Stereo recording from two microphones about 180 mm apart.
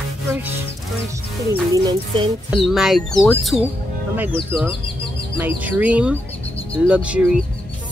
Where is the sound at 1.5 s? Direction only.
20° right (ahead or behind).